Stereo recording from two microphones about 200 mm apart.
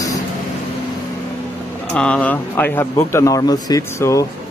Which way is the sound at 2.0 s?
5° left (ahead or behind).